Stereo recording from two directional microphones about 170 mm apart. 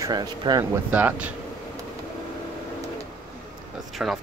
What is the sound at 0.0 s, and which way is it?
Speech, 25° right (ahead or behind).